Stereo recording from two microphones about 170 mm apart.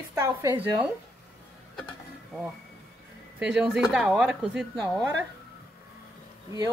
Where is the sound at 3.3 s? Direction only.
5° right (ahead or behind).